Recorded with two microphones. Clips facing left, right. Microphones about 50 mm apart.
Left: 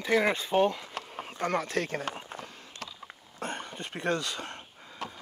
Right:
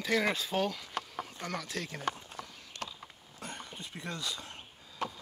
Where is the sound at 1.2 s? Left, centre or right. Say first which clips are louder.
Left 9 dB; left.